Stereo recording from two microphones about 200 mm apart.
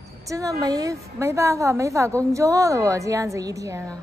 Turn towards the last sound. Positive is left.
turn(degrees=-15)  # may be behind; listen again after turning